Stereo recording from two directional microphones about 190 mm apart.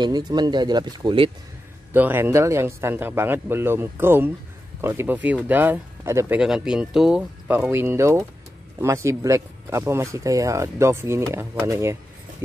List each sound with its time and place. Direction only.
0.0 s speech: 20° right (ahead or behind)
2.0 s speech: 10° right (ahead or behind)